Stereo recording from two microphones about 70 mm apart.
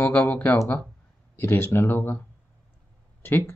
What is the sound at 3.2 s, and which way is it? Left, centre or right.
Speech, left.